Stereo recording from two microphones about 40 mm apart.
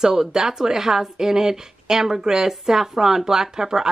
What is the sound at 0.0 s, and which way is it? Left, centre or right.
Speech, centre.